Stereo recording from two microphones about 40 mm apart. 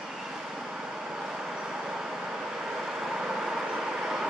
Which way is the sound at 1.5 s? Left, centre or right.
Centre.